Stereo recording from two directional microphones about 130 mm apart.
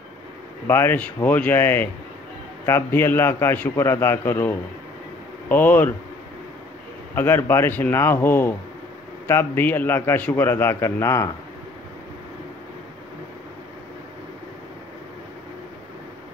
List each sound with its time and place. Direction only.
0.7 s a man's voice: 20° left (ahead or behind)
7.2 s a man's voice: 20° left (ahead or behind)